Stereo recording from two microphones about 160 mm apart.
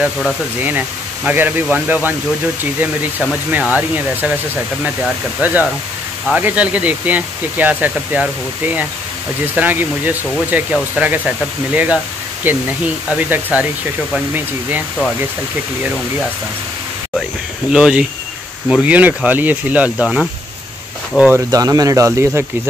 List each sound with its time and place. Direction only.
0.0 s speech: 10° right (ahead or behind)
5.4 s speech: 10° right (ahead or behind)
17.6 s speech: 5° right (ahead or behind)
21.5 s speech: 20° right (ahead or behind)